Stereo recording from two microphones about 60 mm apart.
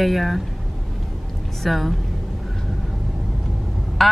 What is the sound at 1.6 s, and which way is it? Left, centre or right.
Speech, centre.